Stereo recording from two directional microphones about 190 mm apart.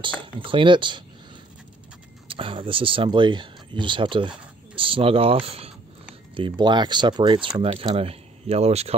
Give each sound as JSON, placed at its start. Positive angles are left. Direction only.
{"t": 0.0, "sound": "speech", "side_deg": -25}
{"t": 2.2, "sound": "speech", "side_deg": -30}